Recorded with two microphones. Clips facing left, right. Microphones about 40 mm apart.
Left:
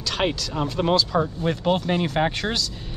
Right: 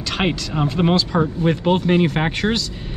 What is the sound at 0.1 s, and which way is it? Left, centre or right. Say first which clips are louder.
Speech: right 3 dB; centre.